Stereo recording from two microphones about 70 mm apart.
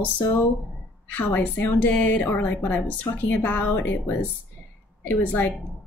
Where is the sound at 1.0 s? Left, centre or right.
Left.